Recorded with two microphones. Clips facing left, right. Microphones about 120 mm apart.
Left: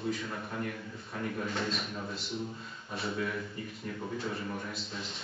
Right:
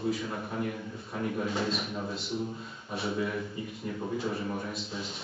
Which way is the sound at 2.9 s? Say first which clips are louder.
Right 3 dB; centre (ahead or behind).